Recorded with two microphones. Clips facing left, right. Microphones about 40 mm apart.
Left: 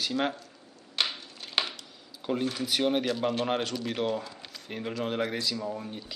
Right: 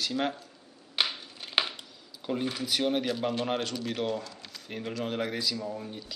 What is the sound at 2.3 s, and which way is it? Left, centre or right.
Speech, centre.